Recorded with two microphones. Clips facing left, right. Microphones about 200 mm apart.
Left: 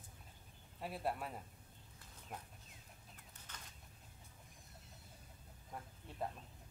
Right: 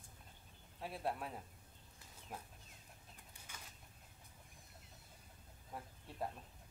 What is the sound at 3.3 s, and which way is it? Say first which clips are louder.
Bird: even; 10° right (ahead or behind).